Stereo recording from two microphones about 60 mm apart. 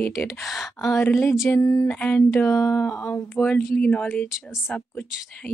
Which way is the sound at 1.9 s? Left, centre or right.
Left.